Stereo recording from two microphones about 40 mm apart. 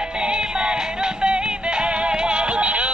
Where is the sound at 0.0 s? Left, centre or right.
Right.